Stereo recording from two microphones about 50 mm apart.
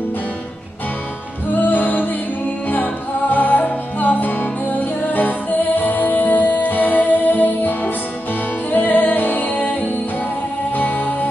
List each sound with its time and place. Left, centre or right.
1.5 s music: left